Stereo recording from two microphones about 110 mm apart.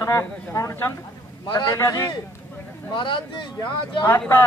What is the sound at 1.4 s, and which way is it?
Speech, 45° left (ahead or behind).